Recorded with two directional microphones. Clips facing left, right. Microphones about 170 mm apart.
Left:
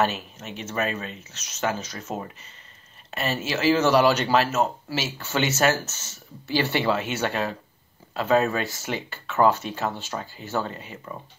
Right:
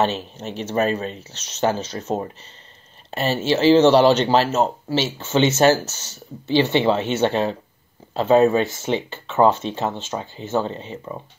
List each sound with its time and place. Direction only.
0.0 s speech: 30° right (ahead or behind)